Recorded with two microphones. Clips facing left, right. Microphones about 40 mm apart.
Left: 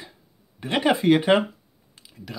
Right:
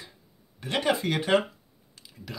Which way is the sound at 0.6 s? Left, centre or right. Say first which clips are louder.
Left 4 dB; left.